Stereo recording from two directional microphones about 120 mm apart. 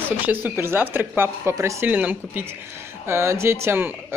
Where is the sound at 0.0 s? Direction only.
15° right (ahead or behind).